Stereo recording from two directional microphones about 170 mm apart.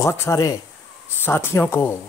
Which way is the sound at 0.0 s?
20° left (ahead or behind).